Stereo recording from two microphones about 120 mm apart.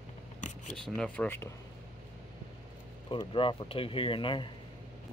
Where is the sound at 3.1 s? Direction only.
45° left (ahead or behind).